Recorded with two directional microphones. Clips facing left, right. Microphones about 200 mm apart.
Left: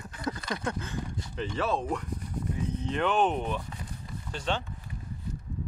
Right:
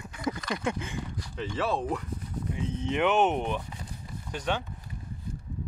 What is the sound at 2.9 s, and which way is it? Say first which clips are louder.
Speech: right 2 dB; 20° right (ahead or behind).